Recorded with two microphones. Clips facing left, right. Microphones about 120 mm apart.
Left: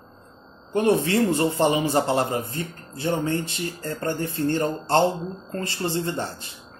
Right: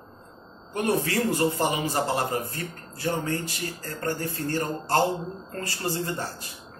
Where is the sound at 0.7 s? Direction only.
25° left (ahead or behind).